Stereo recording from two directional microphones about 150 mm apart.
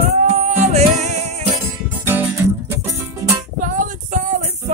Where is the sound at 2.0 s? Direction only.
15° right (ahead or behind).